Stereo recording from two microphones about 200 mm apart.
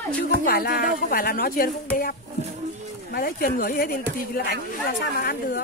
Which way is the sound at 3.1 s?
50° left (ahead or behind).